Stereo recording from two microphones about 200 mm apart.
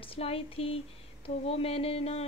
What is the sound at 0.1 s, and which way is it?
A woman's voice, 30° left (ahead or behind).